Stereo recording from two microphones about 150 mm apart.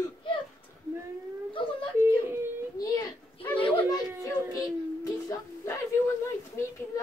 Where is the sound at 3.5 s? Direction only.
35° left (ahead or behind).